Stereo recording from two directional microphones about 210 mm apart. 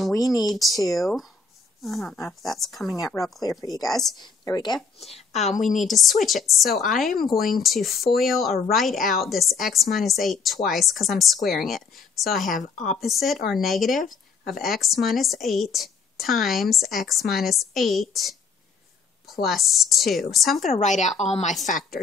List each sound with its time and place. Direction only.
0.1 s speech: 15° left (ahead or behind)
0.5 s a woman's voice: centre (ahead or behind)
3.3 s speech: 15° left (ahead or behind)
3.8 s a woman's voice: centre (ahead or behind)
4.2 s a woman's voice: 20° left (ahead or behind)
5.1 s speech: 30° left (ahead or behind)
5.9 s a woman's voice: centre (ahead or behind)
19.4 s a woman's voice: centre (ahead or behind)
20.6 s speech: 35° left (ahead or behind)